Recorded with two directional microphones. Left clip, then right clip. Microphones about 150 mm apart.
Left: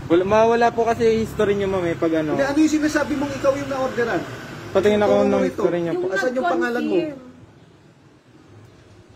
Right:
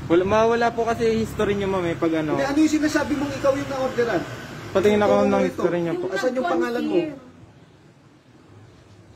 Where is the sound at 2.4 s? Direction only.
30° right (ahead or behind).